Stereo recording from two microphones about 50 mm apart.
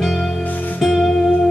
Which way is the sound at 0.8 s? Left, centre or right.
Centre.